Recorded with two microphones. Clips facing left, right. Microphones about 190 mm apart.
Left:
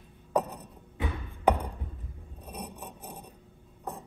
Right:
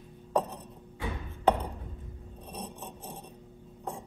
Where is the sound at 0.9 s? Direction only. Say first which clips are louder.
Left 2 dB; 10° left (ahead or behind).